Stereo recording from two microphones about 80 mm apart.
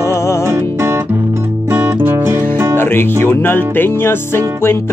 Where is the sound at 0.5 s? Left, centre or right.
Right.